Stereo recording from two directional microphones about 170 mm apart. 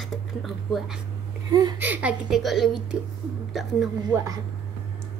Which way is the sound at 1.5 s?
20° right (ahead or behind).